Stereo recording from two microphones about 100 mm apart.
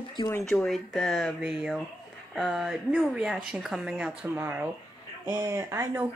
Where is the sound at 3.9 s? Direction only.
15° right (ahead or behind).